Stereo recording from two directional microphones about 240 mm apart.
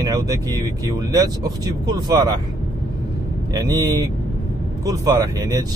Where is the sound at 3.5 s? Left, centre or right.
Centre.